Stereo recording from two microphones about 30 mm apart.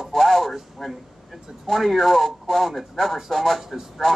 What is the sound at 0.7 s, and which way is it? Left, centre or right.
Speech, centre.